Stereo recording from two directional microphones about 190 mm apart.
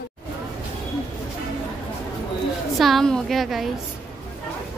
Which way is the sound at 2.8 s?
Centre (ahead or behind).